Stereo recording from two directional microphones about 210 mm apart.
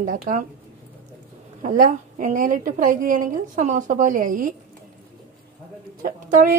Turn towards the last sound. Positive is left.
turn(degrees=-40)  # may be behind; listen again after turning